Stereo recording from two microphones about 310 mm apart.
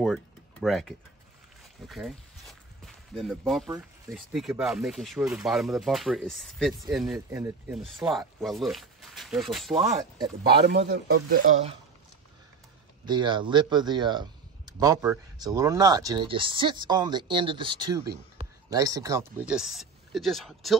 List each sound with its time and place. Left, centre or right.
0.0 s a sound: centre
1.9 s speech: centre
9.8 s a man's voice: centre
10.6 s a man's voice: right
13.0 s a man's voice: centre